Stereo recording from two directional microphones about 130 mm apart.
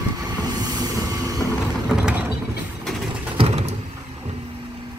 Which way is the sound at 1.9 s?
10° right (ahead or behind).